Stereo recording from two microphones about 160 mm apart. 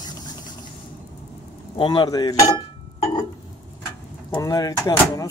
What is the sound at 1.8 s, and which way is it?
Speech, 25° left (ahead or behind).